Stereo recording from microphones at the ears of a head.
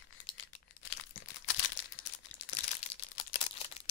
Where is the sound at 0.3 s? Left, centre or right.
Left.